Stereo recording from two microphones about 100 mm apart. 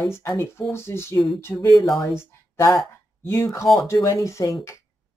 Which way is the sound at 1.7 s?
Centre (ahead or behind).